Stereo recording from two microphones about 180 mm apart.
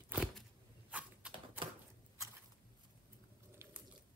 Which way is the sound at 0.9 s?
5° right (ahead or behind).